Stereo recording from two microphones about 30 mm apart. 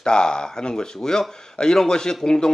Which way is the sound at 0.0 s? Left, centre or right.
Left.